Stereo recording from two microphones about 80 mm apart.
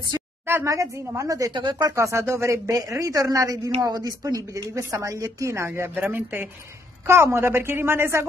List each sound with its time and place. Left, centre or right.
0.7 s speech: right
1.5 s speech: right
2.0 s speech: right
5.9 s speech: right